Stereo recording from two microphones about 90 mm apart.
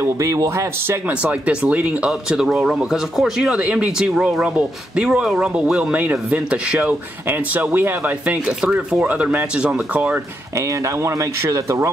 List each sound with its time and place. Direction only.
0.0 s speech: 35° right (ahead or behind)
1.2 s speech: 15° right (ahead or behind)
11.0 s speech: 30° right (ahead or behind)